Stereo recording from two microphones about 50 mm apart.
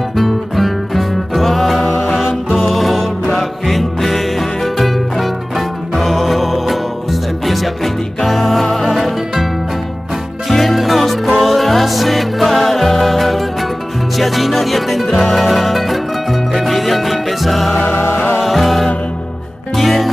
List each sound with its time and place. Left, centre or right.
0.1 s music: centre
10.5 s music: centre
17.8 s music: left
18.4 s music: centre